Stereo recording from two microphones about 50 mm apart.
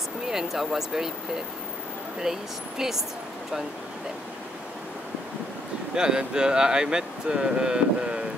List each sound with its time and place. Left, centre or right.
0.3 s speech: centre
2.3 s speech: centre
5.9 s speech: centre